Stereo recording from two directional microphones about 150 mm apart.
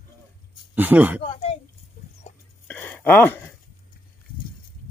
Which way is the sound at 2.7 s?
10° left (ahead or behind).